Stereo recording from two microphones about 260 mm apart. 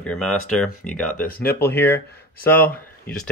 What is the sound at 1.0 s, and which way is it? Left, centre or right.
Speech, left.